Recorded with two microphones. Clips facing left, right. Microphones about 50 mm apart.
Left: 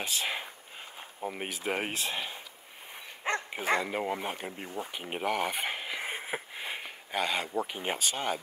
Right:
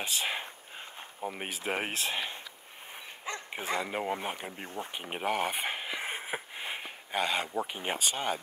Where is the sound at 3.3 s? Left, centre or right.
Left.